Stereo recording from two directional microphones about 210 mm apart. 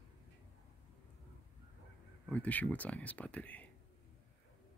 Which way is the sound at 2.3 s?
5° left (ahead or behind).